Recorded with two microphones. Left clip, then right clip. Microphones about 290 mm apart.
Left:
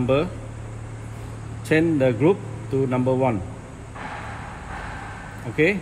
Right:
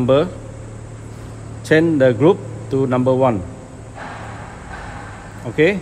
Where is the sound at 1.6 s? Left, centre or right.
Right.